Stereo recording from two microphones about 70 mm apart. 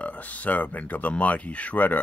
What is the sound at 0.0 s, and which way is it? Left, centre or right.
Speech, left.